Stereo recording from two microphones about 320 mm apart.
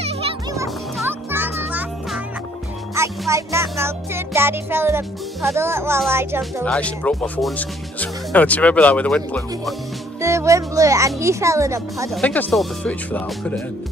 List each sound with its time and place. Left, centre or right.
0.0 s music: centre
0.9 s music: centre
6.6 s speech: centre
10.2 s music: centre
12.2 s speech: centre